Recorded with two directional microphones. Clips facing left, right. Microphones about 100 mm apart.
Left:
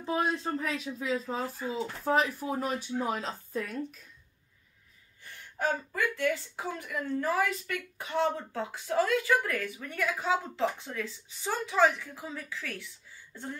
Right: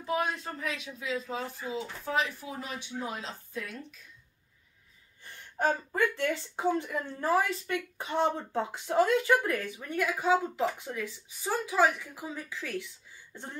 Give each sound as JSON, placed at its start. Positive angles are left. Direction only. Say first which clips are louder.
{"t": 0.0, "sound": "speech", "louder": "left 1 dB", "side_deg": 30}
{"t": 5.6, "sound": "speech", "louder": "right 3 dB", "side_deg": -25}